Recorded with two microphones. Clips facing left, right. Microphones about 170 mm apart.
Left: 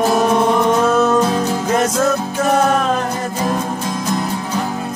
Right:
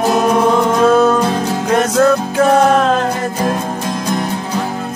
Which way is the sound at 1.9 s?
60° right (ahead or behind).